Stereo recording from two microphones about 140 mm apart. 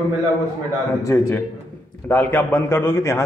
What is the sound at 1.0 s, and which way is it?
A man's voice, 15° left (ahead or behind).